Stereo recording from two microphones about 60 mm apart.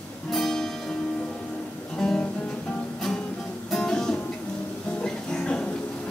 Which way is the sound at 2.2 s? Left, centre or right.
Left.